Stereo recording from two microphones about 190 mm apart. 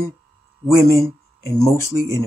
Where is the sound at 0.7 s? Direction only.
15° right (ahead or behind).